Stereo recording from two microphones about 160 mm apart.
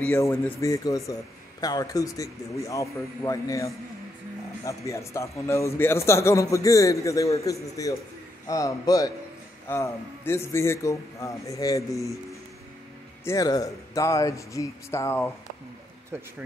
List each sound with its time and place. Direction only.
0.1 s a man's voice: 20° left (ahead or behind)
13.2 s a man's voice: 20° left (ahead or behind)